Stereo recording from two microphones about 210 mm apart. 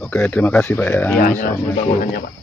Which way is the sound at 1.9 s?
40° left (ahead or behind).